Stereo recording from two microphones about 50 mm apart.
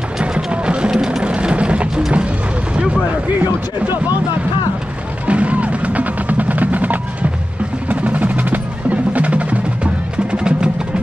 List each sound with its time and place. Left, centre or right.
0.2 s music: right
1.2 s a sound: right
3.3 s speech: right
5.2 s music: right
7.9 s percussion: right
10.1 s music: centre